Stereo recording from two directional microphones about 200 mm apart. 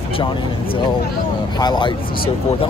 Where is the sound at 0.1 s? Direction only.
25° left (ahead or behind).